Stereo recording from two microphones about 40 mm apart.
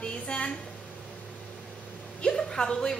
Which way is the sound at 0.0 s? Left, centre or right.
Left.